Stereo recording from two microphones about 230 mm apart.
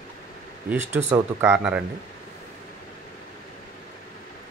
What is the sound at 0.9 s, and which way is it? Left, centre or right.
Speech, centre.